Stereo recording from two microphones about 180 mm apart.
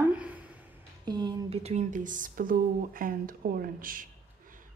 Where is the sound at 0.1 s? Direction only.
5° right (ahead or behind).